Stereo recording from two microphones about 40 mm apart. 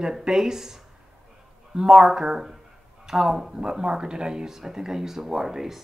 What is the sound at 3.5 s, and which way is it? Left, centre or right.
Speech, centre.